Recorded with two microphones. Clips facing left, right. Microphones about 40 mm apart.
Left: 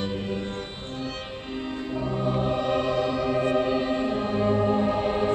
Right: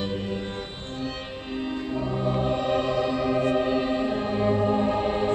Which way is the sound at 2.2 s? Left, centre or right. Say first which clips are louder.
Even; centre.